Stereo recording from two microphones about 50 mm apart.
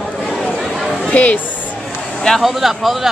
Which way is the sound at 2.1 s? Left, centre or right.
Centre.